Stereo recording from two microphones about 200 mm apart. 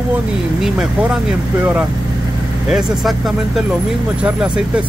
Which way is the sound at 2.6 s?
Centre (ahead or behind).